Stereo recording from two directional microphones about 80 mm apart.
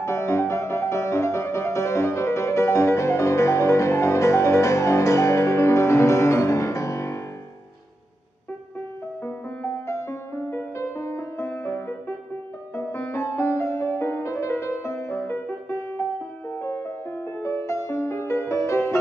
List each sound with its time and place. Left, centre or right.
0.0 s music: left
9.8 s music: left